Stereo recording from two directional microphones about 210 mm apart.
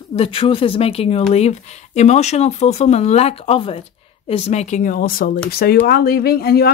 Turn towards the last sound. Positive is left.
turn(degrees=50)  # may be behind; listen again after turning